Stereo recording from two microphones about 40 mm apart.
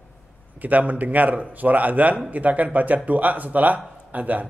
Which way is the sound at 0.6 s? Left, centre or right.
Right.